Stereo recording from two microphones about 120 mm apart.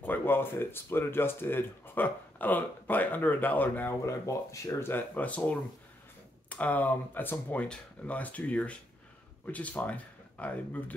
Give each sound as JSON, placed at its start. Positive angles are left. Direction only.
{"t": 0.0, "sound": "speech", "side_deg": 15}
{"t": 4.0, "sound": "speech", "side_deg": 25}